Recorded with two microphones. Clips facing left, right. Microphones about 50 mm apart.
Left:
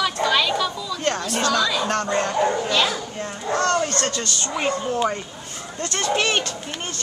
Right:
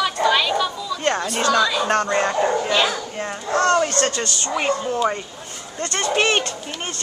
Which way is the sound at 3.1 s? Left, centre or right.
Right.